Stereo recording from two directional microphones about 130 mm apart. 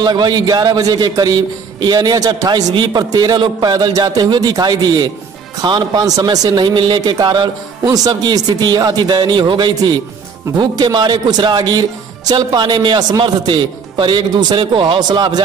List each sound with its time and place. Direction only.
0.0 s a man's voice: 30° right (ahead or behind)